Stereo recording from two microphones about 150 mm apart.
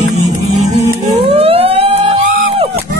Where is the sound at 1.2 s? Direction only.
40° right (ahead or behind).